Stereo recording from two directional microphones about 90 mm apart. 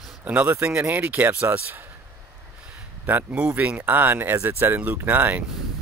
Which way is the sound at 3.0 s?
15° right (ahead or behind).